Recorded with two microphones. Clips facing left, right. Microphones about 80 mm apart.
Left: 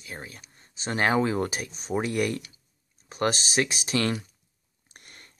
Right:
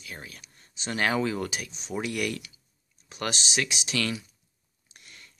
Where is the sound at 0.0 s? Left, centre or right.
Left.